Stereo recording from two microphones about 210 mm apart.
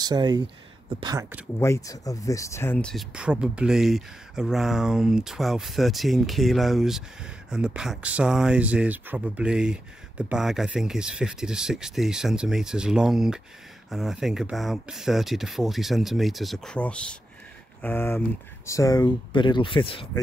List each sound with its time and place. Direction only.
0.0 s speech: 20° right (ahead or behind)
1.6 s speech: 15° left (ahead or behind)